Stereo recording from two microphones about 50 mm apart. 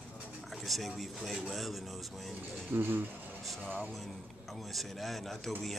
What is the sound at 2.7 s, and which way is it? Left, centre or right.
Speech, right.